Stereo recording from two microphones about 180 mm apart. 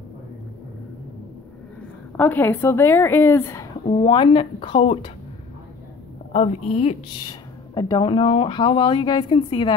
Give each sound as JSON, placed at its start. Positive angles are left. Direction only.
{"t": 2.1, "sound": "a woman's voice", "side_deg": 10}
{"t": 3.8, "sound": "speech", "side_deg": 35}
{"t": 6.3, "sound": "speech", "side_deg": 35}
{"t": 7.2, "sound": "speech", "side_deg": 25}